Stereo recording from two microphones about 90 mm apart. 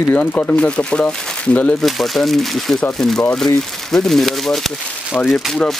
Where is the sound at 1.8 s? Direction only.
Centre (ahead or behind).